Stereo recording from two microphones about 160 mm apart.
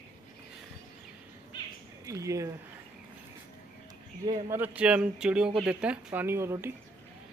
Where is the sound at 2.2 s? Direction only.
20° right (ahead or behind).